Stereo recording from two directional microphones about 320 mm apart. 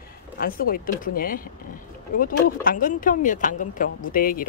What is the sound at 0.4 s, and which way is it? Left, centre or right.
Speech, left.